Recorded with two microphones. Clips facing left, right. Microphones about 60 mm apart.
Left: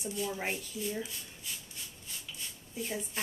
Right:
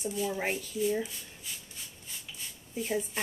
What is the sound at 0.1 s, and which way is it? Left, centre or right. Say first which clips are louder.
Speech: right 2 dB; centre.